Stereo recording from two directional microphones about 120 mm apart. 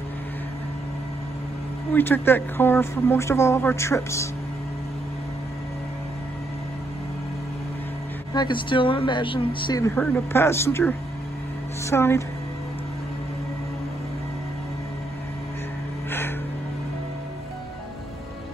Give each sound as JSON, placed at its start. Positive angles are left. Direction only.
{"t": 2.0, "sound": "speech", "side_deg": 15}
{"t": 8.3, "sound": "speech", "side_deg": 40}
{"t": 9.8, "sound": "speech", "side_deg": 20}